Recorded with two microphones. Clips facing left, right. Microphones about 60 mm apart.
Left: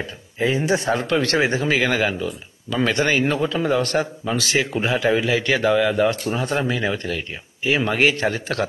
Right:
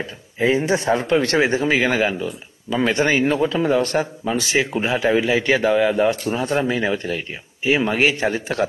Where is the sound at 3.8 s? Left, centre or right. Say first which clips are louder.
Right 1 dB; centre.